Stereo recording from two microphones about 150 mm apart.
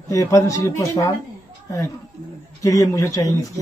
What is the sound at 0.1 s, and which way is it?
Speech, 20° left (ahead or behind).